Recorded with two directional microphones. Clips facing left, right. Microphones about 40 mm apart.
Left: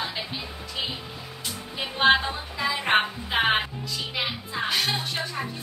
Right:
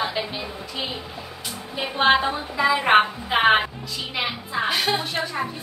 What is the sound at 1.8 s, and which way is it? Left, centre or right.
A woman's voice, centre.